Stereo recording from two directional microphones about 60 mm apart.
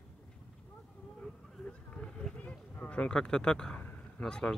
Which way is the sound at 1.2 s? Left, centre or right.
Centre.